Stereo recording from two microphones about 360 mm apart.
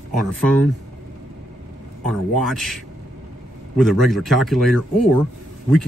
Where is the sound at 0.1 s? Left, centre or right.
Right.